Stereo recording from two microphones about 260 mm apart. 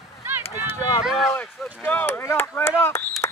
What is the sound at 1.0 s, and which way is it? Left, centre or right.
Speech, centre.